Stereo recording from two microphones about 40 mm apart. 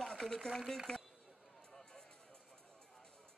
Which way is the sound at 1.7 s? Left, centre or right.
Centre.